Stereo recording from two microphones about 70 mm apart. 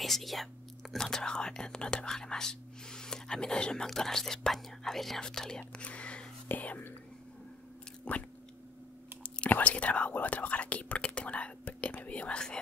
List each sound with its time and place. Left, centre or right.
0.0 s speech: centre; by 6.9 s left
8.1 s speech: left